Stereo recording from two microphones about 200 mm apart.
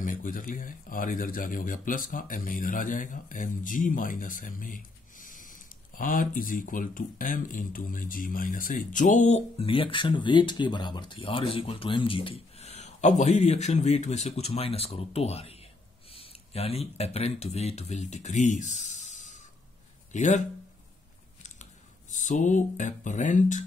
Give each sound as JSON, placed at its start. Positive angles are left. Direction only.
{"t": 0.0, "sound": "a man's voice", "side_deg": 40}
{"t": 22.1, "sound": "speech", "side_deg": 40}